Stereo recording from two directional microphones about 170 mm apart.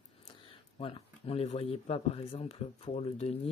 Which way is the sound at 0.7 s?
35° left (ahead or behind).